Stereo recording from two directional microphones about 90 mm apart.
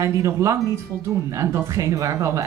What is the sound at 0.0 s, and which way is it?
Speech, 35° right (ahead or behind).